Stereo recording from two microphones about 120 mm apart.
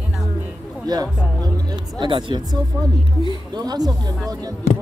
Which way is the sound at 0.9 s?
35° right (ahead or behind).